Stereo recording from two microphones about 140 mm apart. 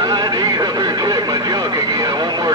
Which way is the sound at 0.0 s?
30° right (ahead or behind).